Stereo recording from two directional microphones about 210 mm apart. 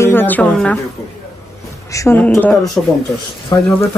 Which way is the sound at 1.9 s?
10° left (ahead or behind).